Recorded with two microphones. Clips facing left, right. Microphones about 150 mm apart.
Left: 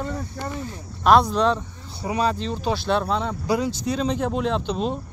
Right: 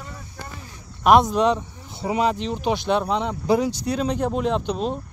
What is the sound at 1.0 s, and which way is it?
Speech, 15° right (ahead or behind).